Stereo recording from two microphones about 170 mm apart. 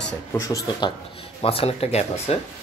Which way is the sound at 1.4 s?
35° left (ahead or behind).